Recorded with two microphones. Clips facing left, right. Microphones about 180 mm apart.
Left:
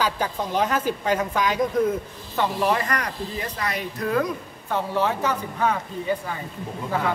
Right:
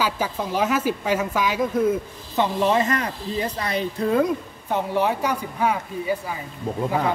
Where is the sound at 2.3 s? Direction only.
25° right (ahead or behind).